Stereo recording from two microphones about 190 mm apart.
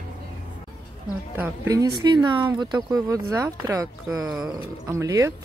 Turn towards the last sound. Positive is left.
turn(degrees=-15)  # may be behind; listen again after turning